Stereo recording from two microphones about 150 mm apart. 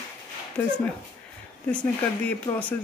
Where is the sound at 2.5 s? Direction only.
30° left (ahead or behind).